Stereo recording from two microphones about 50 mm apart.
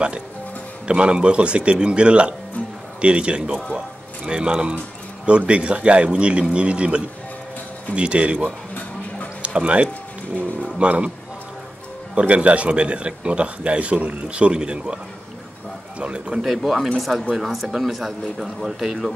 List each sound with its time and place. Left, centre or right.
0.8 s speech: right
12.2 s speech: right
16.3 s a man's voice: centre